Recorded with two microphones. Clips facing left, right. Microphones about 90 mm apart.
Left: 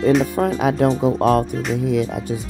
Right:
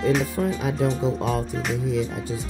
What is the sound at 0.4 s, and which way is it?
Speech, 65° left (ahead or behind).